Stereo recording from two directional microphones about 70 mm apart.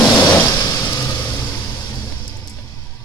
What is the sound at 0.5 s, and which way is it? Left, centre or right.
Vehicle, left.